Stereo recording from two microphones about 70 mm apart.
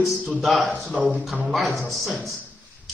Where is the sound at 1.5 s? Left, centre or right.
Centre.